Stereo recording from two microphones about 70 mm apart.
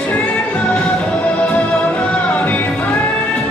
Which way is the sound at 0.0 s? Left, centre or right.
Centre.